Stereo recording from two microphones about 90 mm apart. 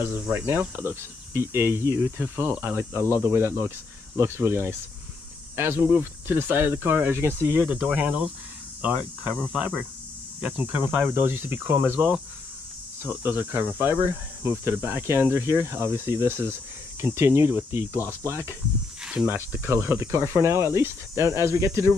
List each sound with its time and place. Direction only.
0.0 s speech: 25° right (ahead or behind)
9.4 s speech: 15° right (ahead or behind); by 21.9 s 35° right (ahead or behind)